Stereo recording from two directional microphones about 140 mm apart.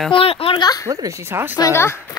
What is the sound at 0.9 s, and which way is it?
Speech, 25° right (ahead or behind).